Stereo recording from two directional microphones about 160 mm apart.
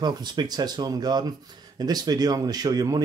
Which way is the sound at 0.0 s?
25° right (ahead or behind).